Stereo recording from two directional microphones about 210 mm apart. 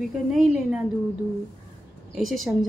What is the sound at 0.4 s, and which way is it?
Speech, centre (ahead or behind).